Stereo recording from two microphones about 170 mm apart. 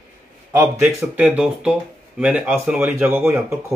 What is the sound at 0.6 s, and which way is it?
Speech, 10° right (ahead or behind).